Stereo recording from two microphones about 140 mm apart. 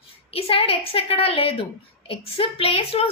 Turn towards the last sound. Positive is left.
turn(degrees=40)  # may be behind; listen again after turning